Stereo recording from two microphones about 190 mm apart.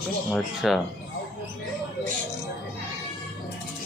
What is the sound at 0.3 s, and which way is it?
Speech, centre (ahead or behind).